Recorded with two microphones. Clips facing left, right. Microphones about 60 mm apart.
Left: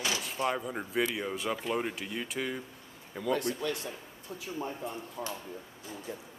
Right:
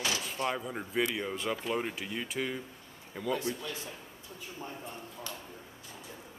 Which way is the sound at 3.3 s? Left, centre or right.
Left.